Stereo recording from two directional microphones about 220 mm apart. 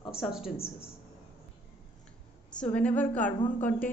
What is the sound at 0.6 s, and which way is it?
Speech, 25° left (ahead or behind).